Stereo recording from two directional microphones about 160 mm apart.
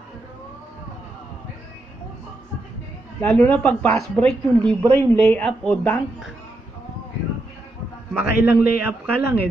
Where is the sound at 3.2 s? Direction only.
10° left (ahead or behind).